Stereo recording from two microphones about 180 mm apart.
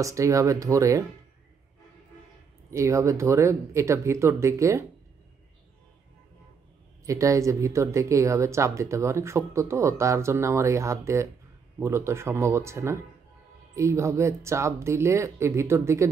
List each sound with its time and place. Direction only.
0.0 s speech: 15° right (ahead or behind)
2.7 s speech: 15° right (ahead or behind)
7.1 s speech: 15° right (ahead or behind)